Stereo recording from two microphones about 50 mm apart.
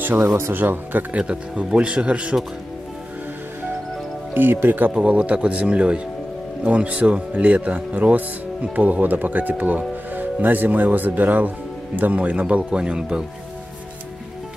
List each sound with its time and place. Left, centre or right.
0.2 s speech: right
1.1 s speech: right
4.3 s speech: right
4.9 s speech: right